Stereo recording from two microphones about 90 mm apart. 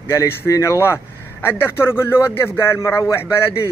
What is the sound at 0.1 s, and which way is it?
A man's voice, 30° left (ahead or behind).